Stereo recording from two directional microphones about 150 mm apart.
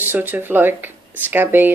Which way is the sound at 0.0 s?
15° right (ahead or behind).